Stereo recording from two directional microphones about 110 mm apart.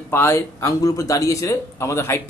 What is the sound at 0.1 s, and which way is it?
Speech, 25° left (ahead or behind).